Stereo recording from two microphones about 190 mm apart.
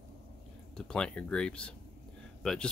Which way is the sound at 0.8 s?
5° left (ahead or behind).